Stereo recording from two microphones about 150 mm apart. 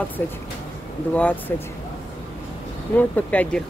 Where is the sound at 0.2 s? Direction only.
15° left (ahead or behind).